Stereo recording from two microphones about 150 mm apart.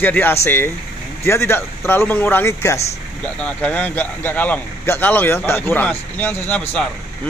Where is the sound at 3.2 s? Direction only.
10° left (ahead or behind).